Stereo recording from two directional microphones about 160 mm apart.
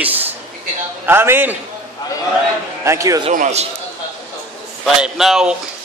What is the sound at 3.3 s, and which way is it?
Speech, 45° right (ahead or behind).